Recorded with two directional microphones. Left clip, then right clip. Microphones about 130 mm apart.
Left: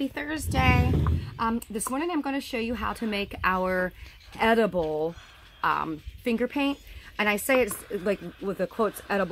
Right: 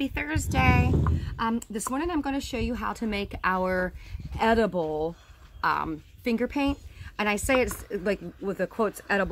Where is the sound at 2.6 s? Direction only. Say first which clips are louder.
Left 1 dB; 20° right (ahead or behind).